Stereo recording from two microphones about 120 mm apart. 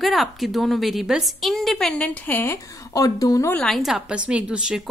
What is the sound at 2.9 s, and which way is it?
Speech, 30° left (ahead or behind).